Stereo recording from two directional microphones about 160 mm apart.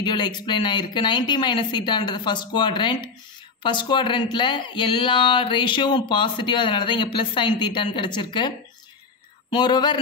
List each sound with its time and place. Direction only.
0.0 s speech: 25° left (ahead or behind)